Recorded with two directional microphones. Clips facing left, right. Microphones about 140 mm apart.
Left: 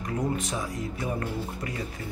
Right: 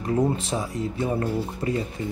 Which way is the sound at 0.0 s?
30° right (ahead or behind).